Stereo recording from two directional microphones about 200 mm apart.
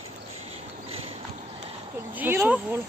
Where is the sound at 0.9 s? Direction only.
30° right (ahead or behind).